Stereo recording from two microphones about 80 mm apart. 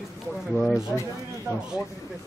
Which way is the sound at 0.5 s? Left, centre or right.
Centre.